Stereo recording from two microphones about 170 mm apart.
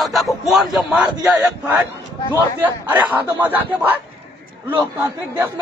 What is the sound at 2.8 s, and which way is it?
A man's voice, 10° right (ahead or behind).